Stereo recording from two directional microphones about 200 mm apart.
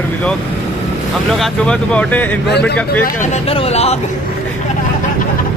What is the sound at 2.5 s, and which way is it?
Speech, 60° left (ahead or behind).